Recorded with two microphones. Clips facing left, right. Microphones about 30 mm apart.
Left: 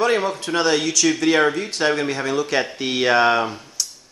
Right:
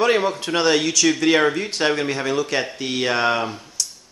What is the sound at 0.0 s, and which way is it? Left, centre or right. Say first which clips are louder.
A man's voice: right 1 dB; centre.